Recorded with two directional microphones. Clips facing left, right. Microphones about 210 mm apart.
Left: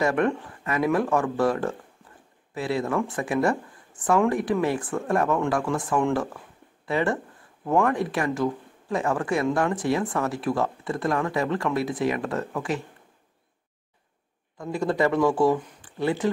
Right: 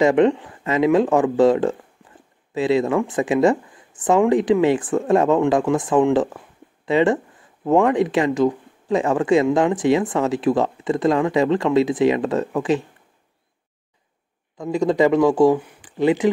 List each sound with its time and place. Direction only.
0.0 s speech: 20° right (ahead or behind)
14.6 s speech: 15° right (ahead or behind)